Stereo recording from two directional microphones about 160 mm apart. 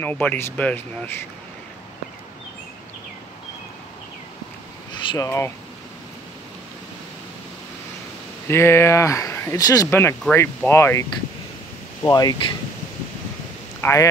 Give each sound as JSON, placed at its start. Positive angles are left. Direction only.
{"t": 0.0, "sound": "speech", "side_deg": 10}
{"t": 5.1, "sound": "speech", "side_deg": 15}
{"t": 8.5, "sound": "speech", "side_deg": 15}
{"t": 13.7, "sound": "speech", "side_deg": 15}